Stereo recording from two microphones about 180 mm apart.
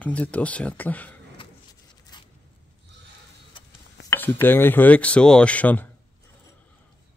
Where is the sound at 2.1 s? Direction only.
20° left (ahead or behind).